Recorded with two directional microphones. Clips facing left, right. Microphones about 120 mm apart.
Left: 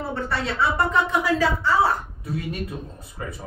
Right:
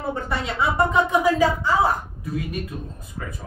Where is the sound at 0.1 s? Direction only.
15° right (ahead or behind).